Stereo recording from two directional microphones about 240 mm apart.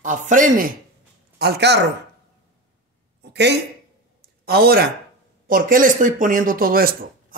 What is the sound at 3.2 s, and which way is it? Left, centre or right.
Speech, right.